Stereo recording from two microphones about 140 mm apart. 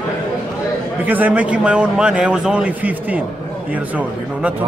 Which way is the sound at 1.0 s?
10° right (ahead or behind).